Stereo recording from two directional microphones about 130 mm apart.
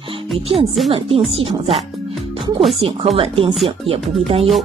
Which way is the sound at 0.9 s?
45° right (ahead or behind).